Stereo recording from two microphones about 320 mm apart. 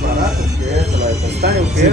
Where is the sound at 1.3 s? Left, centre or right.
Right.